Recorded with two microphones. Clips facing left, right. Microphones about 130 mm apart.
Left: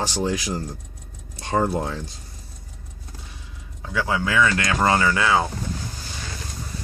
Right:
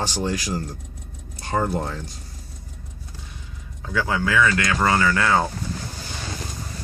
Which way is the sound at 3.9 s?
10° left (ahead or behind).